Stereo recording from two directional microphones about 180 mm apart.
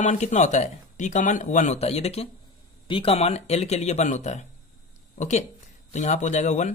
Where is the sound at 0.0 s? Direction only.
40° left (ahead or behind).